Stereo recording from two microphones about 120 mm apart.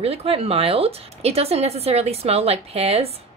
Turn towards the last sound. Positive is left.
turn(degrees=-55)  # may be behind; listen again after turning